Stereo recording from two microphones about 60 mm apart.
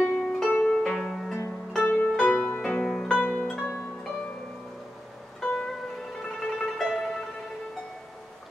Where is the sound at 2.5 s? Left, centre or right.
Left.